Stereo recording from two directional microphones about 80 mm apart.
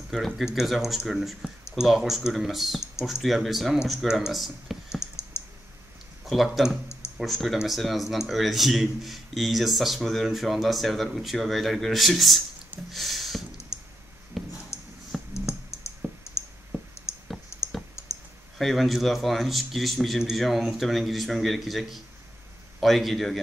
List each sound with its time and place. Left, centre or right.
0.1 s speech: centre
5.0 s clicking: left
6.2 s speech: centre
12.9 s a sound: centre
13.7 s clicking: left
14.3 s a sound: centre
15.1 s clicking: centre
16.3 s clicking: left
16.7 s a sound: right
17.5 s clicking: left
18.6 s speech: centre